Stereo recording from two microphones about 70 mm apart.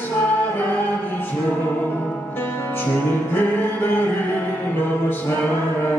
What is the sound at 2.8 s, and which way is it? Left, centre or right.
Music, left.